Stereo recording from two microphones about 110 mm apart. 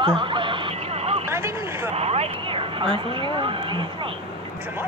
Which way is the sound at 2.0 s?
70° right (ahead or behind).